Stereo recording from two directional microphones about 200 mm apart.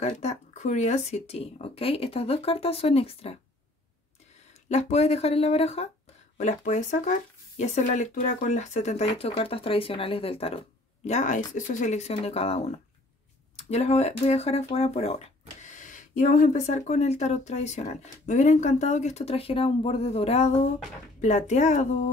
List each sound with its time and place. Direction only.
0.0 s speech: 35° left (ahead or behind)
4.6 s speech: 35° left (ahead or behind)